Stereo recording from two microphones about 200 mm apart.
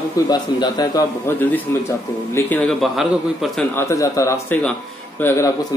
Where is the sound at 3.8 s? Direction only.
15° left (ahead or behind).